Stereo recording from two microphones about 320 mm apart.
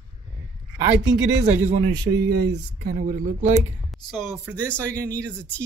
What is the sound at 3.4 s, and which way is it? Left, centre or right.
A woman's voice, centre.